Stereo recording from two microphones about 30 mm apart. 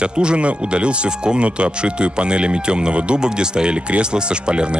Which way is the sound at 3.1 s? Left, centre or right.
Right.